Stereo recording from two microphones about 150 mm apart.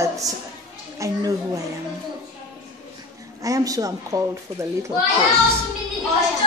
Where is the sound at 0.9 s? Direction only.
20° right (ahead or behind).